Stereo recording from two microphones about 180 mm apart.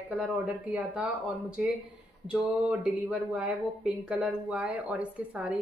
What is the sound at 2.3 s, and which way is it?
Speech, 5° right (ahead or behind).